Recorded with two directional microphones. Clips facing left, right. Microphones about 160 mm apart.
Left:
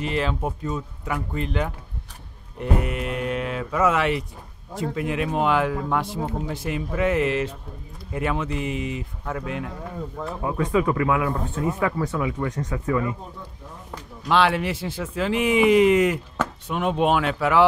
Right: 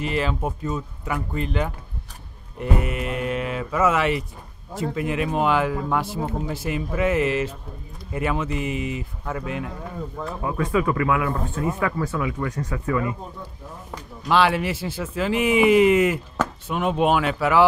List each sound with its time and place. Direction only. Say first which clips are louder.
0.0 s speech: even; 5° right (ahead or behind)
10.4 s speech: left 1 dB; 15° left (ahead or behind)
14.2 s speech: right 1 dB; 5° right (ahead or behind)